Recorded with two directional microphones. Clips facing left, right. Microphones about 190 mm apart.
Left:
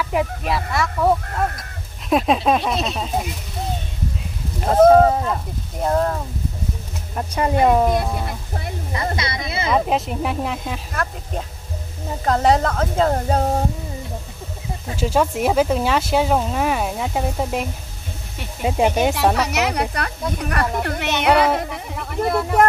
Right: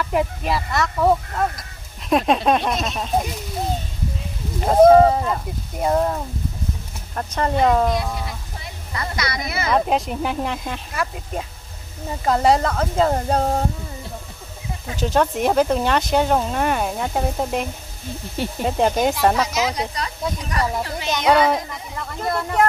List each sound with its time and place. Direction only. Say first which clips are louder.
0.0 s speech: even; centre (ahead or behind)
4.6 s speech: right 1 dB; centre (ahead or behind)
7.2 s speech: left 1 dB; 10° left (ahead or behind)
8.9 s speech: left 1 dB; 25° left (ahead or behind)
9.7 s speech: even; centre (ahead or behind)
15.0 s speech: even; 5° left (ahead or behind)
19.3 s speech: left 1 dB; 65° left (ahead or behind)
21.3 s speech: even; 5° left (ahead or behind)
21.5 s speech: left 3 dB; 65° left (ahead or behind)
21.9 s a sound: left 4 dB; 5° left (ahead or behind)